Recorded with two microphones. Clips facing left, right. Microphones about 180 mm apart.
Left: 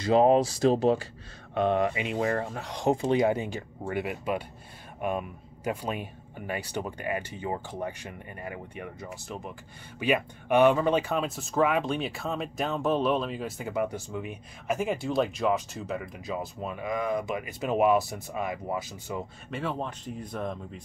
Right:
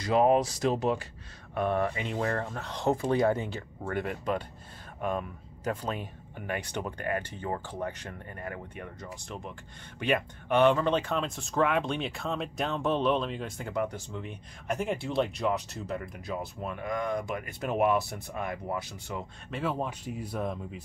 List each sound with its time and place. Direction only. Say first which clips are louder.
0.0 s speech: left 3 dB; 30° left (ahead or behind)
1.5 s speech: left 3 dB; 20° left (ahead or behind); by 20.8 s 5° right (ahead or behind)